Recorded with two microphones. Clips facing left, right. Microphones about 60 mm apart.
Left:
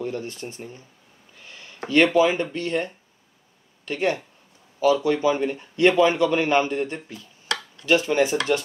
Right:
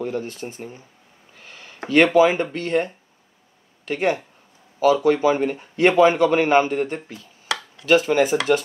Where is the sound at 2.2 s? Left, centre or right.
Right.